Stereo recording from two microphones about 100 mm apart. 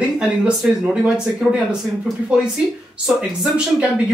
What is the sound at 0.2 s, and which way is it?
Speech, 10° right (ahead or behind).